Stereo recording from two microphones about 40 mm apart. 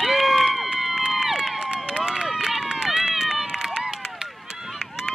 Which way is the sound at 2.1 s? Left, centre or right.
Centre.